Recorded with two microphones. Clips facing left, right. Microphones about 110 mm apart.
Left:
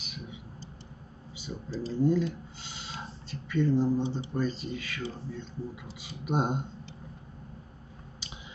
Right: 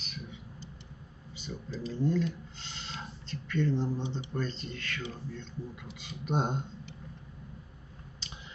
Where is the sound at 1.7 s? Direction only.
30° left (ahead or behind).